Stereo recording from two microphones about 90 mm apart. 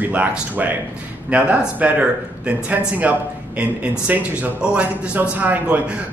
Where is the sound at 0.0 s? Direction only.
15° right (ahead or behind).